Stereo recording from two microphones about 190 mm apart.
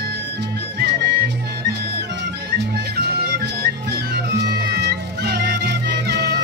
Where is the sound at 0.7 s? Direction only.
55° right (ahead or behind).